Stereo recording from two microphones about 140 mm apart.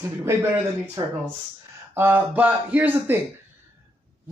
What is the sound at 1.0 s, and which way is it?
Speech, 25° right (ahead or behind).